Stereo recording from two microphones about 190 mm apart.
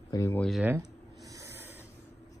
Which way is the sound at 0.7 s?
20° right (ahead or behind).